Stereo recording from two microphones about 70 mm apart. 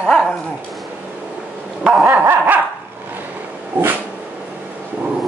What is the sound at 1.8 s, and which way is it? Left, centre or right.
Dog, centre.